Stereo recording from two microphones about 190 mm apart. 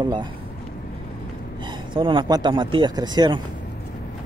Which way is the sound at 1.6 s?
25° right (ahead or behind).